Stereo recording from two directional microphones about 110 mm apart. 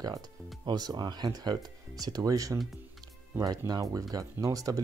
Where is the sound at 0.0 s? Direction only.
35° right (ahead or behind).